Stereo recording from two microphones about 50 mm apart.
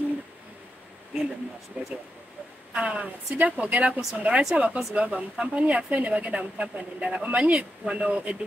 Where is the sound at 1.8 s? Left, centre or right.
Right.